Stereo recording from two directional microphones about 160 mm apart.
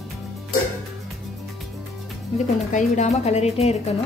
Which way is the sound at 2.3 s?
50° left (ahead or behind).